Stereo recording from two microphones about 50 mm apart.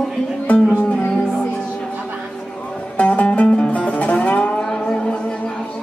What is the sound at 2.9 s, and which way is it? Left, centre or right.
Music, left.